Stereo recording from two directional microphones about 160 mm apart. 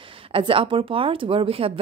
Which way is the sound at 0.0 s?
35° right (ahead or behind).